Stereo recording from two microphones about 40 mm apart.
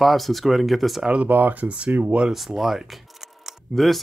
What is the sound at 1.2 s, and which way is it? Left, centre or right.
Speech, right.